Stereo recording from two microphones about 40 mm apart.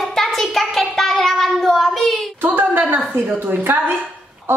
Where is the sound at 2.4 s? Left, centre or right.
Right.